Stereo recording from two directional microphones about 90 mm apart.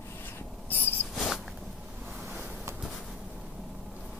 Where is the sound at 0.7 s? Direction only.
20° left (ahead or behind).